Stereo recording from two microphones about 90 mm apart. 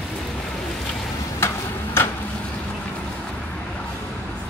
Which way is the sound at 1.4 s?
25° left (ahead or behind).